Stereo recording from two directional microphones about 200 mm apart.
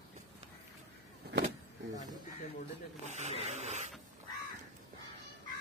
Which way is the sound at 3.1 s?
35° right (ahead or behind).